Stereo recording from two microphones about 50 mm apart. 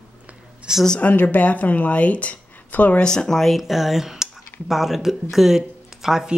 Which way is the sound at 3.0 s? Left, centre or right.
Centre.